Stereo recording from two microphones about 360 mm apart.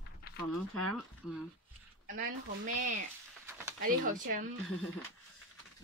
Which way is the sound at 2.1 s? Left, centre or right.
Right.